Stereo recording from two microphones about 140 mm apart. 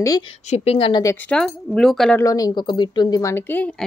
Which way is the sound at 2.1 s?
25° left (ahead or behind).